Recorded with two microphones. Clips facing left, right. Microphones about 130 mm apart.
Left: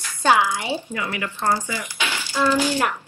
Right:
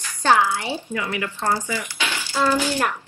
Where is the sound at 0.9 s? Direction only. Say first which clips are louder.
Right 1 dB; 30° left (ahead or behind).